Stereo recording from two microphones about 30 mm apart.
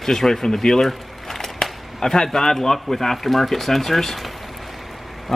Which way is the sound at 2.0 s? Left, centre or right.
Centre.